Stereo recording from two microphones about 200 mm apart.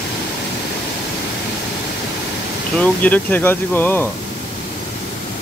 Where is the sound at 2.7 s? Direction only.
10° left (ahead or behind).